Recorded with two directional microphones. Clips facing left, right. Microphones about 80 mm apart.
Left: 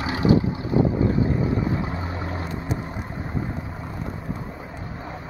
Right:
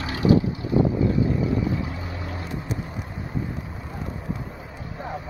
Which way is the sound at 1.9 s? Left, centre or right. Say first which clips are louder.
Left 4 dB; left.